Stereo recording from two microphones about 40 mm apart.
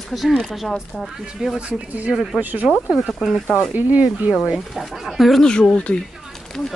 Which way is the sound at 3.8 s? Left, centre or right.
Right.